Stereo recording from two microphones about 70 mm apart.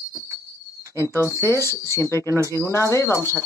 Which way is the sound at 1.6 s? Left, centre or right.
Left.